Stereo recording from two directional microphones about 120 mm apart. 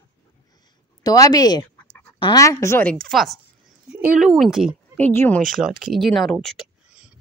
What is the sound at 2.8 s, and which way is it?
Speech, 5° left (ahead or behind).